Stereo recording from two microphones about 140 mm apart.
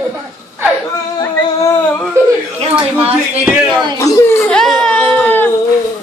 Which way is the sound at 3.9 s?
20° left (ahead or behind).